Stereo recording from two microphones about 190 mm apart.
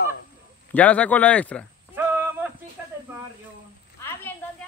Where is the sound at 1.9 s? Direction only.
10° right (ahead or behind).